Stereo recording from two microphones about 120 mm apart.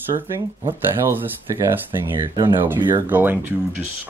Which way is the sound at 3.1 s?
15° right (ahead or behind).